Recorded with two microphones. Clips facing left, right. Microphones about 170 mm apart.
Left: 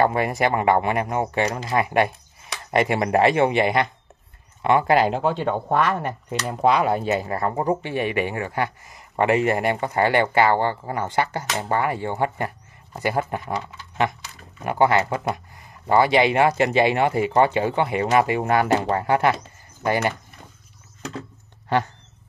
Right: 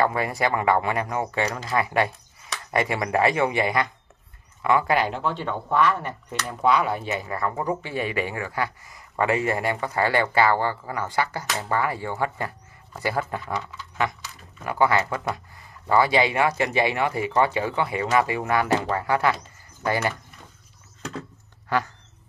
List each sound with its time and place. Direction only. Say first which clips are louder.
0.0 s speech: left 3 dB; 20° left (ahead or behind); by 6.8 s 50° left (ahead or behind)
7.2 s speech: left 4 dB; 30° left (ahead or behind)
7.7 s speech: left 4 dB; 20° left (ahead or behind)